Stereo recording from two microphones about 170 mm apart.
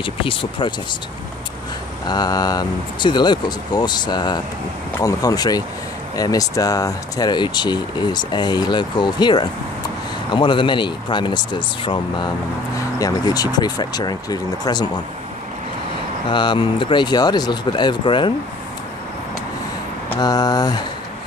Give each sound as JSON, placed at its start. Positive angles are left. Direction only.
{"t": 0.0, "sound": "speech", "side_deg": 30}
{"t": 2.0, "sound": "speech", "side_deg": 25}
{"t": 16.3, "sound": "speech", "side_deg": 30}
{"t": 20.2, "sound": "speech", "side_deg": 25}